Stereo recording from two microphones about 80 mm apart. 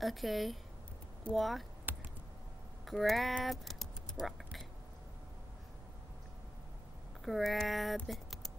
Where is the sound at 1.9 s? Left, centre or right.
Right.